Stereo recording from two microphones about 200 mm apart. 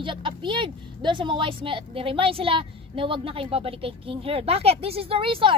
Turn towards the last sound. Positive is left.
turn(degrees=-25)  # may be behind; listen again after turning